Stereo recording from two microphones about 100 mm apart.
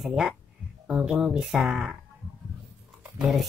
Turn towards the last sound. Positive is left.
turn(degrees=0)  # may be behind; listen again after turning